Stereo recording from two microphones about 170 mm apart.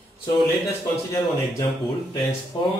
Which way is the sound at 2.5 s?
30° left (ahead or behind).